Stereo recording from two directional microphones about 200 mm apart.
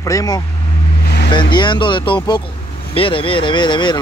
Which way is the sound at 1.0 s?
55° left (ahead or behind).